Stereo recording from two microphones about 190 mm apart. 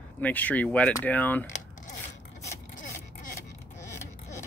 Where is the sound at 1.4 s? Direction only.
40° left (ahead or behind).